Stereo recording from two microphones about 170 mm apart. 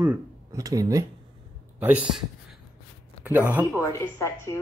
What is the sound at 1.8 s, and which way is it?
Speech, 10° right (ahead or behind).